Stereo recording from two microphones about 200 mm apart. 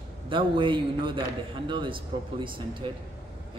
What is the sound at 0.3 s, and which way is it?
Speech, 25° right (ahead or behind).